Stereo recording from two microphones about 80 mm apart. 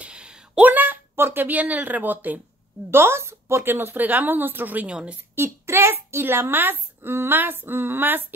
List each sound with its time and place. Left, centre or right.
0.0 s a sound: centre
0.7 s a woman's voice: right
5.3 s a woman's voice: right